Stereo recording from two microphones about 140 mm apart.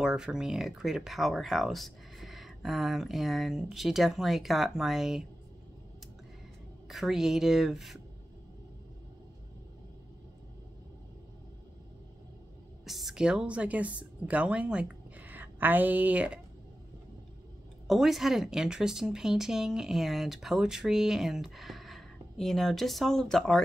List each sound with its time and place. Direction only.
0.0 s speech: 5° right (ahead or behind)
6.9 s speech: centre (ahead or behind)
12.8 s a woman's voice: centre (ahead or behind)
17.8 s speech: centre (ahead or behind)